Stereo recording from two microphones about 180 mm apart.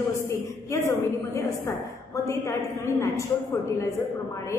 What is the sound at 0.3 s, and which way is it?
A woman's voice, 15° left (ahead or behind).